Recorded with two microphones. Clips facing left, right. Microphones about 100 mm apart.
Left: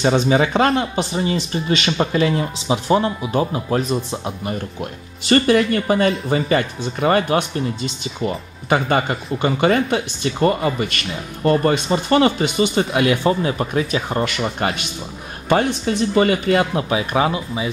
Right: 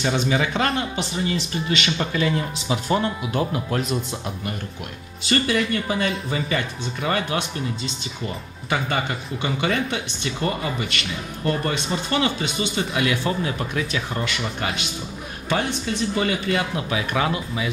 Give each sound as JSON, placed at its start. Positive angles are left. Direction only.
{"t": 0.0, "sound": "speech", "side_deg": 35}
{"t": 2.4, "sound": "speech", "side_deg": 15}
{"t": 3.7, "sound": "speech", "side_deg": 30}
{"t": 5.2, "sound": "speech", "side_deg": 50}
{"t": 13.4, "sound": "speech", "side_deg": 30}